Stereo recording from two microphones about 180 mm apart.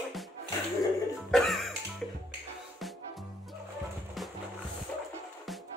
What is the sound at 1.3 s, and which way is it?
Music, centre (ahead or behind).